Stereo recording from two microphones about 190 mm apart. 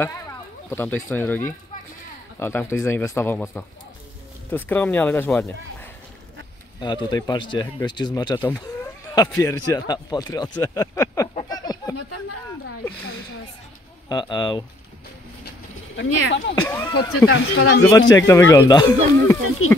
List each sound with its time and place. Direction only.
0.0 s speech: 10° left (ahead or behind)
6.8 s speech: 25° left (ahead or behind)
8.6 s chicken: 20° left (ahead or behind)
9.4 s speech: 20° left (ahead or behind)
11.4 s a sound: 20° left (ahead or behind)
14.0 s speech: 20° left (ahead or behind)
16.0 s speech: 70° left (ahead or behind)
16.6 s speech: 20° left (ahead or behind)
17.3 s speech: 80° left
17.9 s speech: 20° left (ahead or behind)
19.6 s speech: 90° left